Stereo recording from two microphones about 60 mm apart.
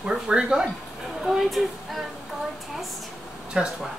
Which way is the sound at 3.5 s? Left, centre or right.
Centre.